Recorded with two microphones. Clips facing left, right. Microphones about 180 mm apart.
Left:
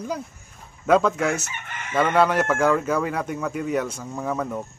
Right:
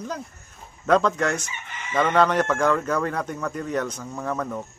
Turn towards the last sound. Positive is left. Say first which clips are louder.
# left 1 dB
turn(degrees=10)  # may be behind; listen again after turning